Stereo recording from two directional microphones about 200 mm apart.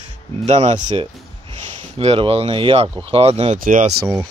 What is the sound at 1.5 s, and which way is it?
Speech, 30° right (ahead or behind).